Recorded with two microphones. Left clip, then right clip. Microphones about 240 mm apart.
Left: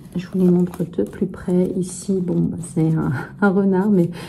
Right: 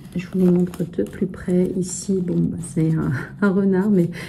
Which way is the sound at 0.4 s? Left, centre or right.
Centre.